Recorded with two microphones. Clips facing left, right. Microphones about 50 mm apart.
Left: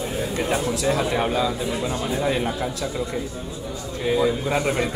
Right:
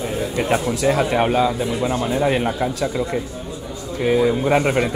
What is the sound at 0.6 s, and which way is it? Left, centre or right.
Speech, right.